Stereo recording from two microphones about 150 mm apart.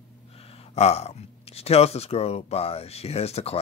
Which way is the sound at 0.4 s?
45° left (ahead or behind).